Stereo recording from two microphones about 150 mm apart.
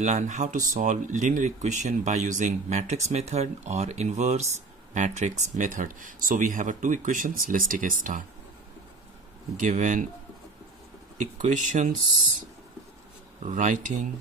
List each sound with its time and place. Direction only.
0.0 s speech: 50° right (ahead or behind)
9.6 s speech: 55° right (ahead or behind)
11.1 s speech: 55° right (ahead or behind)
13.4 s speech: 55° right (ahead or behind)